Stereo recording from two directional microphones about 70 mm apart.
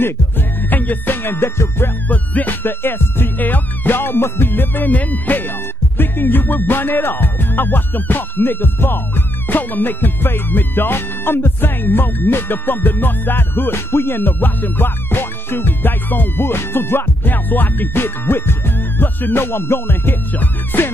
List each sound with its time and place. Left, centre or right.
0.0 s music: left
2.0 s music: left